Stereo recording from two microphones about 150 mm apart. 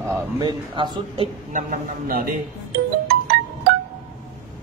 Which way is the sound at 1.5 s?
60° right (ahead or behind).